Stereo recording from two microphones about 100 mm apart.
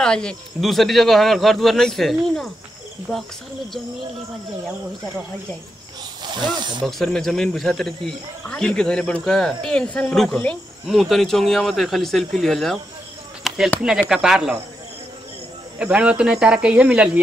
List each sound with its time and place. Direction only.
0.0 s speech: 5° left (ahead or behind)
6.2 s speech: 50° right (ahead or behind)
6.8 s speech: centre (ahead or behind)
13.5 s a sound: centre (ahead or behind)
13.8 s speech: 5° right (ahead or behind)
15.8 s speech: 10° right (ahead or behind)